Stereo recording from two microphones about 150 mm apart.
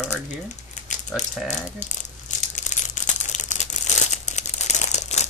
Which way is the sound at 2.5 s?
55° left (ahead or behind).